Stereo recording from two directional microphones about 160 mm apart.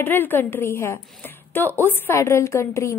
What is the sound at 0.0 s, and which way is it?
A woman's voice, 10° left (ahead or behind).